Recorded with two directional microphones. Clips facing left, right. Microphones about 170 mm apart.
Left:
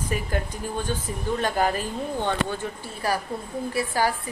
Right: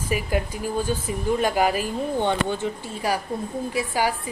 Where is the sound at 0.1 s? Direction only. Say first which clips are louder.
Right 5 dB; 10° right (ahead or behind).